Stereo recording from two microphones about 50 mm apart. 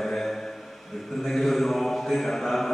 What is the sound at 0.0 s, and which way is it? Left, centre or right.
Mantra, centre.